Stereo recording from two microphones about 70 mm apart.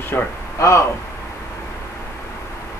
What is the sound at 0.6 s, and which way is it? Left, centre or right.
Speech, left.